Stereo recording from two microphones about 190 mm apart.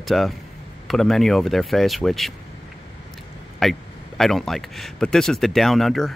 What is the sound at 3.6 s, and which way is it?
Speech, centre (ahead or behind).